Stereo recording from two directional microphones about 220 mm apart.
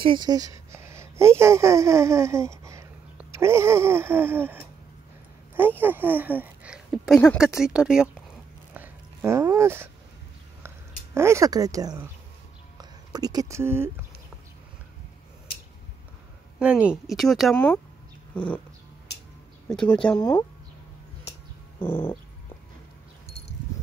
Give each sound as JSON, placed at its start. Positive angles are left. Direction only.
{"t": 0.0, "sound": "speech", "side_deg": -20}
{"t": 8.7, "sound": "a sound", "side_deg": -10}
{"t": 11.1, "sound": "speech", "side_deg": -10}
{"t": 16.5, "sound": "speech", "side_deg": -5}
{"t": 18.3, "sound": "cat", "side_deg": 5}
{"t": 19.7, "sound": "speech", "side_deg": 5}
{"t": 21.7, "sound": "a sound", "side_deg": 10}